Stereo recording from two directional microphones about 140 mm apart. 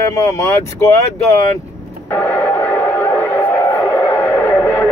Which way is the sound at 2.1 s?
10° left (ahead or behind).